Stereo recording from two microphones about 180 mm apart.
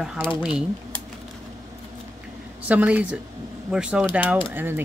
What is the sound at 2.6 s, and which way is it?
Speech, 10° right (ahead or behind).